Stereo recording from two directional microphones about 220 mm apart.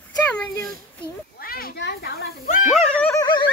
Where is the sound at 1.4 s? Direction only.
40° left (ahead or behind).